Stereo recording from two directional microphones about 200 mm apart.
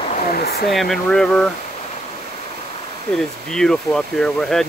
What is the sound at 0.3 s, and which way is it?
Speech, 50° left (ahead or behind).